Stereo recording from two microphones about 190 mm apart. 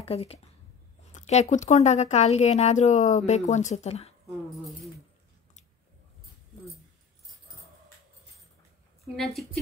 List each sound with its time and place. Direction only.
0.0 s speech: 30° left (ahead or behind)
9.0 s a woman's voice: centre (ahead or behind)